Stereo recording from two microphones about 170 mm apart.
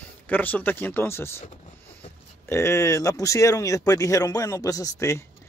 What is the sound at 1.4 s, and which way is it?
Vehicle, 45° left (ahead or behind).